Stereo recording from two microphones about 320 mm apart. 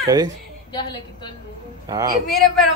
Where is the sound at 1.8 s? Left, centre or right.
Centre.